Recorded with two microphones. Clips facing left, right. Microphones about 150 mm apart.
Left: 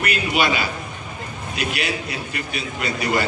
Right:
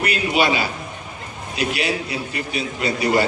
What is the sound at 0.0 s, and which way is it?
A man's voice, 30° right (ahead or behind).